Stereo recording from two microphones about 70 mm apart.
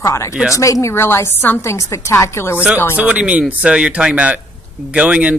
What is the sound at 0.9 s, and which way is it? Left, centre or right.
A woman's voice, left.